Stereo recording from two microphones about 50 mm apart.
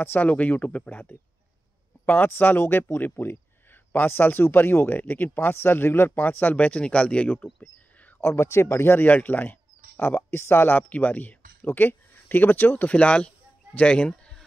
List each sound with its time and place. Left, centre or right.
0.0 s speech: left
8.2 s speech: left
9.0 s speech: left
12.8 s speech: left